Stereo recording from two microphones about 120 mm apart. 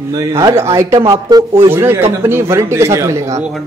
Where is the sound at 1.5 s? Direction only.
20° right (ahead or behind).